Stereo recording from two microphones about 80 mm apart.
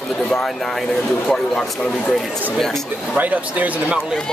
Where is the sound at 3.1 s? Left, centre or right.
Centre.